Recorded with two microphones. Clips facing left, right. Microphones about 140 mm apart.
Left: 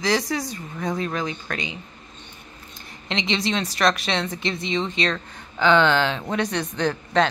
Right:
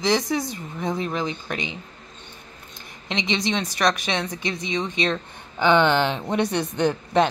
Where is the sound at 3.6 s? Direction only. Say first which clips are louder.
Left 1 dB; 15° right (ahead or behind).